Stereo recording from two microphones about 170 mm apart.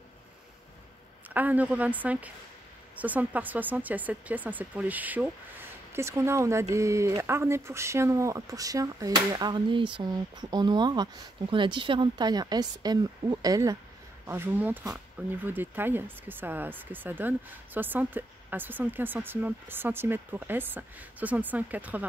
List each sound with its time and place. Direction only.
1.3 s speech: 10° right (ahead or behind)